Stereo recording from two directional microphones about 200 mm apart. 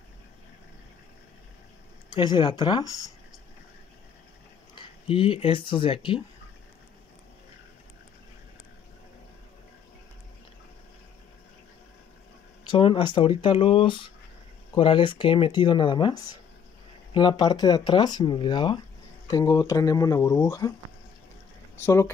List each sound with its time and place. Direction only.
2.0 s speech: 25° left (ahead or behind)
5.0 s speech: 25° left (ahead or behind)
12.7 s speech: 25° left (ahead or behind)
21.8 s speech: 15° left (ahead or behind)